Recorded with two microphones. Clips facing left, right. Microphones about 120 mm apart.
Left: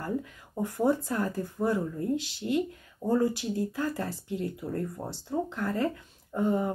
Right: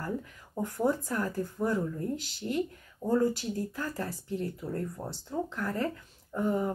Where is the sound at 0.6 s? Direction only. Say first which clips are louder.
Left 3 dB; 20° left (ahead or behind).